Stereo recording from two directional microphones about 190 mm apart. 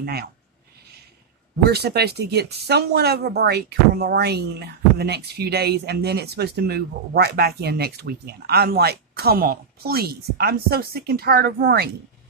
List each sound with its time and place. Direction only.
0.0 s speech: 55° right (ahead or behind)
1.6 s speech: 55° right (ahead or behind)